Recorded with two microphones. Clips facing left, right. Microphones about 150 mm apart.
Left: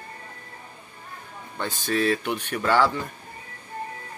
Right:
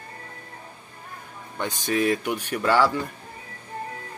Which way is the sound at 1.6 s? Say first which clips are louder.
Right 1 dB; 15° right (ahead or behind).